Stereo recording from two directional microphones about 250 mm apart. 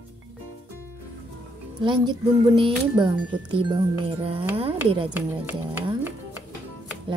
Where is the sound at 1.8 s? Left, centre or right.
Centre.